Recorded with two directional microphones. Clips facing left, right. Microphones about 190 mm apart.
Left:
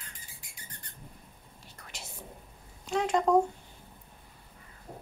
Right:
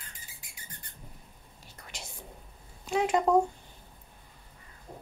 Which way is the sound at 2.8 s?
5° right (ahead or behind).